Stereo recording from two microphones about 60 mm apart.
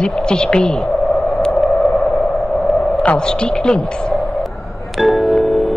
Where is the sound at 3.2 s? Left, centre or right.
Centre.